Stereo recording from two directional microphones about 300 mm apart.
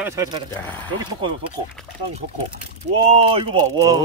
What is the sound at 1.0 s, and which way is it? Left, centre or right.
Speech, centre.